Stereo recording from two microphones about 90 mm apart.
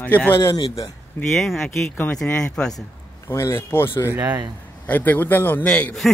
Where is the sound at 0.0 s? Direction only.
15° left (ahead or behind).